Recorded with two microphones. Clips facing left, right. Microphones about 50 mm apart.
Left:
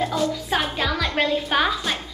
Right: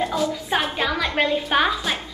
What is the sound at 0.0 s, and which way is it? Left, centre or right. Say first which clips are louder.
Music: even; centre.